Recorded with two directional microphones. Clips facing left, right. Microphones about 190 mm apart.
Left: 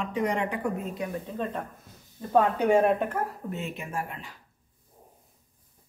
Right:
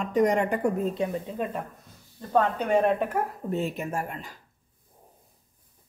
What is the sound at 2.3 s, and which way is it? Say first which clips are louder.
Speech: left 1 dB; 5° left (ahead or behind).